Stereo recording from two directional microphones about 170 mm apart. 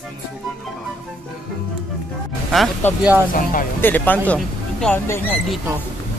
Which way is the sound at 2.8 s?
10° left (ahead or behind).